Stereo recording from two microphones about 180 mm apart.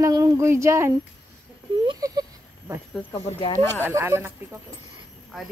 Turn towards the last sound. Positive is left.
turn(degrees=0)  # may be behind; listen again after turning